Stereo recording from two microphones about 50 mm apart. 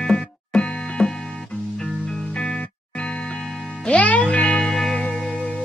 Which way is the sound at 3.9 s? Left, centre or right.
Left.